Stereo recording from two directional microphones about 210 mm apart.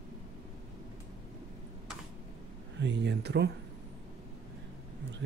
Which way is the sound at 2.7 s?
55° right (ahead or behind).